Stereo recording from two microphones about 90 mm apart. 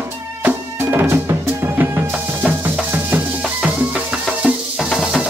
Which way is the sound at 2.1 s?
15° right (ahead or behind).